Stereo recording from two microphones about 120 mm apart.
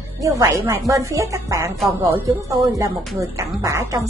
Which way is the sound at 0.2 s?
25° right (ahead or behind).